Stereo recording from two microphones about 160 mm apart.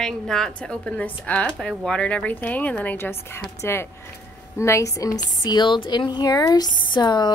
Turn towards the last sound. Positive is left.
turn(degrees=25)  # may be behind; listen again after turning